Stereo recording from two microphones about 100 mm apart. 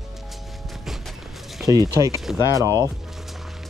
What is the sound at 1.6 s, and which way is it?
Speech, 35° right (ahead or behind).